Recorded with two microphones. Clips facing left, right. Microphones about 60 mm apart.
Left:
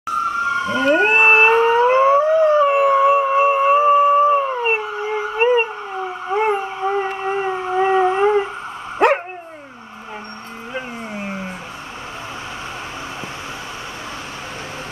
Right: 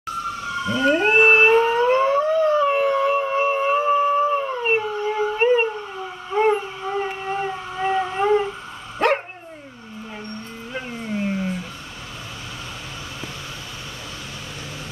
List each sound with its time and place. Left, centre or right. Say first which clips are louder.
0.2 s dog: left 8 dB; left
6.3 s howl: even; centre
6.8 s whale vocalization: left 5 dB; left
9.0 s dog: left 4 dB; centre
10.7 s a sound: even; centre